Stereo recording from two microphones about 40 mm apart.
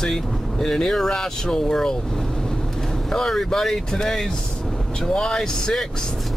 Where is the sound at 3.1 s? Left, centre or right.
Centre.